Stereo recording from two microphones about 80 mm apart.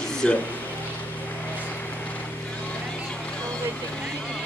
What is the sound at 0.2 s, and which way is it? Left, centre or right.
Speech, centre.